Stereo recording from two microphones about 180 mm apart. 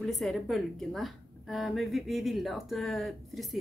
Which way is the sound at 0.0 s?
Centre (ahead or behind).